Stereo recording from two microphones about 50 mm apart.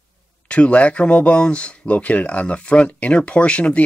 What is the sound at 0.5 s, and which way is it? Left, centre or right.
Speech, left.